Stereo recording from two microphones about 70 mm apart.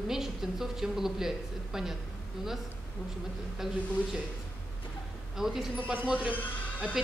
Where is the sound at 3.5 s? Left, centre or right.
Centre.